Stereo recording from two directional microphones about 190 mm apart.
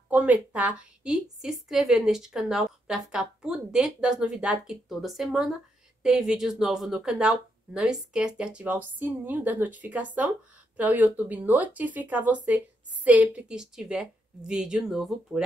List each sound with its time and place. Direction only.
0.1 s a woman's voice: 5° right (ahead or behind)